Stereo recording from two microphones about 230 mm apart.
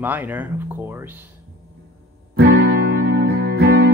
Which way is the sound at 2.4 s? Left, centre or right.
Right.